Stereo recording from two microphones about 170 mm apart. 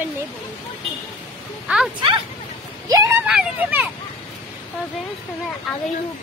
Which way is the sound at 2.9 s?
20° right (ahead or behind).